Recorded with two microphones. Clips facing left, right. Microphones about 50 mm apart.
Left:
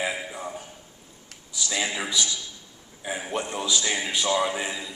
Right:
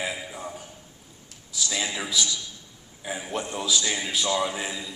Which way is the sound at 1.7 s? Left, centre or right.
Centre.